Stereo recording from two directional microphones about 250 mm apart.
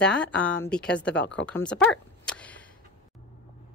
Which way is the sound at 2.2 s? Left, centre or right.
Centre.